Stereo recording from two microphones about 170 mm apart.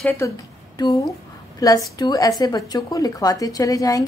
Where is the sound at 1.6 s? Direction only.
20° left (ahead or behind).